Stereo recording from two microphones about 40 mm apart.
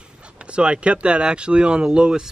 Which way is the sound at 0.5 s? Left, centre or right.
Right.